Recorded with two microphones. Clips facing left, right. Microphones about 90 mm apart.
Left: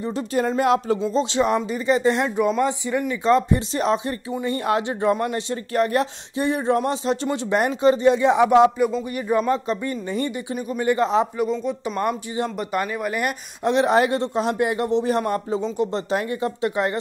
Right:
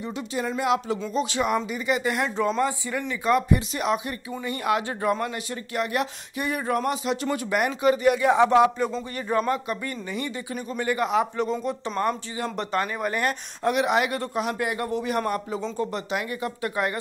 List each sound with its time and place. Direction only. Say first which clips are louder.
0.0 s speech: left 6 dB; 40° left (ahead or behind)
1.0 s a man's voice: left 5 dB; 25° left (ahead or behind)
2.2 s a man's voice: left 4 dB; 15° left (ahead or behind)
9.5 s a man's voice: left 4 dB; 25° left (ahead or behind)
12.0 s speech: left 2 dB; 20° left (ahead or behind)
12.4 s speech: right 2 dB; 5° left (ahead or behind)
13.7 s a man's voice: left 5 dB; 35° left (ahead or behind)